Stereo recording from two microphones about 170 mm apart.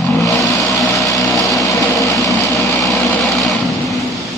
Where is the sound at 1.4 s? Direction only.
20° left (ahead or behind).